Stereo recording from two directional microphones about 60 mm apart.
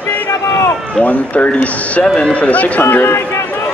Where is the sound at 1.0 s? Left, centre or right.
Left.